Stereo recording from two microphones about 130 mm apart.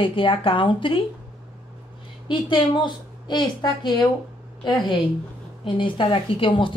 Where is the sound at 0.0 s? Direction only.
40° left (ahead or behind).